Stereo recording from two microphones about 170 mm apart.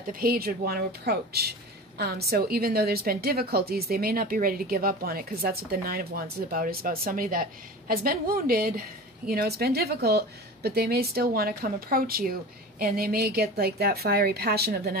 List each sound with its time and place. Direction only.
0.1 s a woman's voice: 60° right (ahead or behind)